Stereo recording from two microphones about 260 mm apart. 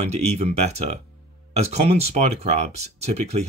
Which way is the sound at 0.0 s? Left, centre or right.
Right.